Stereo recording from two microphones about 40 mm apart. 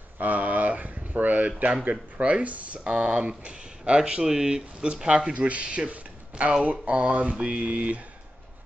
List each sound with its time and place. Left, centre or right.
0.2 s a sound: right
1.9 s mantra: right
2.8 s speech: right
5.3 s speech: right
5.9 s a sound: right
6.9 s mantra: right